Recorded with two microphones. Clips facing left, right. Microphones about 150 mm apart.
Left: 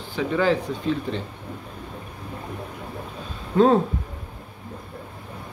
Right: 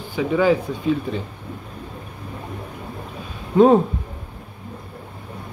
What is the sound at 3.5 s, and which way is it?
Speech, 15° right (ahead or behind).